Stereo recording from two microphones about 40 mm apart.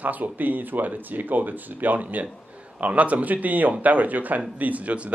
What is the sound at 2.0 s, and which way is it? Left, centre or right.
Speech, right.